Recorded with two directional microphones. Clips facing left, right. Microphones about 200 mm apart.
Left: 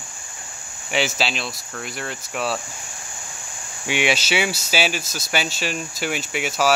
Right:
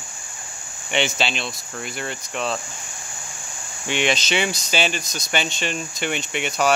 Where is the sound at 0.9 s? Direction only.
5° left (ahead or behind).